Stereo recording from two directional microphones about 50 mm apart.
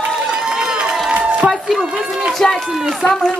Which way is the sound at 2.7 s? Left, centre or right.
Centre.